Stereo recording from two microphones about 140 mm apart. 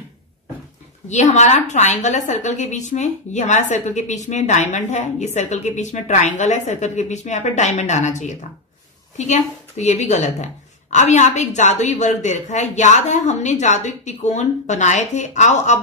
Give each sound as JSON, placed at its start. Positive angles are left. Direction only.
{"t": 1.0, "sound": "a woman's voice", "side_deg": 55}